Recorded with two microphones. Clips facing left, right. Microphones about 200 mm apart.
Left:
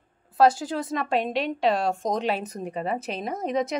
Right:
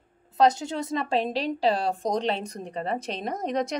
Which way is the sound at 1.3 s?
30° right (ahead or behind).